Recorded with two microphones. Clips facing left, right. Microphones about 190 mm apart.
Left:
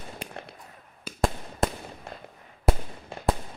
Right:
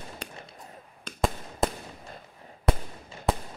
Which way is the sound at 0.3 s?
60° left (ahead or behind).